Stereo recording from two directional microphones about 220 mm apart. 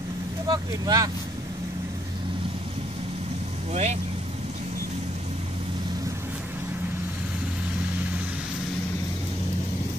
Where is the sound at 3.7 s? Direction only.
30° right (ahead or behind).